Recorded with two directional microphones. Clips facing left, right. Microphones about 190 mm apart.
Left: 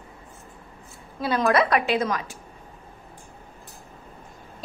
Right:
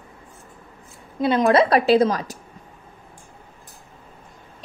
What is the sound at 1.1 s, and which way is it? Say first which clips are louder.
A woman's voice: right 5 dB; 20° right (ahead or behind).